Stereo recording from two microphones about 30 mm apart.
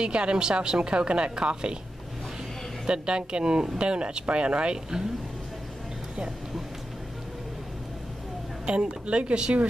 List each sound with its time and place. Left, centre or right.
0.0 s a woman's voice: right
2.9 s a woman's voice: right
8.6 s a woman's voice: right